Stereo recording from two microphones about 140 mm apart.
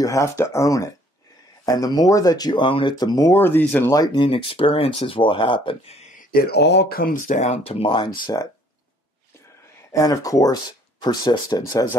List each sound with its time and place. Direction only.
0.0 s speech: 20° left (ahead or behind)
3.9 s speech: 30° left (ahead or behind)
4.3 s speech: 40° left (ahead or behind)
6.3 s speech: 90° left; by 8.5 s 30° left (ahead or behind)
9.9 s speech: 25° left (ahead or behind)